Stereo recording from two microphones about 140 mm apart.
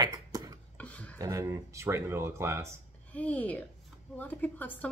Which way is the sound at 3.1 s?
10° left (ahead or behind).